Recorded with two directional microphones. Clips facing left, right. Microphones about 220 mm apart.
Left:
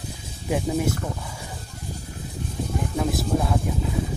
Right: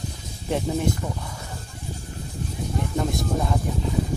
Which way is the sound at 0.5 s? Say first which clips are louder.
Left 1 dB; 5° left (ahead or behind).